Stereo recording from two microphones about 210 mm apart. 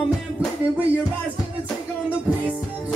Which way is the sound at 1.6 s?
5° right (ahead or behind).